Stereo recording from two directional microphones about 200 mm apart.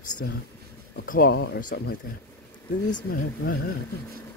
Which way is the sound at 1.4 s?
60° left (ahead or behind).